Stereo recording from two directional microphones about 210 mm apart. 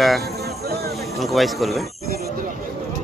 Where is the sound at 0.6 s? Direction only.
50° right (ahead or behind).